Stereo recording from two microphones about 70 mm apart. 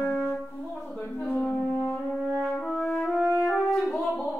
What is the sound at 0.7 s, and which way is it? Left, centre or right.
Music, centre.